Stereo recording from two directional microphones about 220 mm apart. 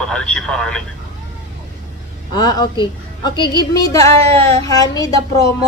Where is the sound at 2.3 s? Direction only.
20° left (ahead or behind).